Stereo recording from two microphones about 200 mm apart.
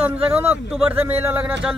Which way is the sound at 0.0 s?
10° right (ahead or behind).